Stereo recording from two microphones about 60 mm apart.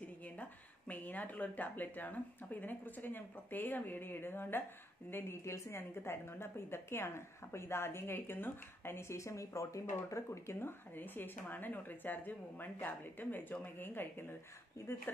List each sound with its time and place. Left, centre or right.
0.2 s speech: left
5.1 s a woman's voice: left
11.0 s speech: left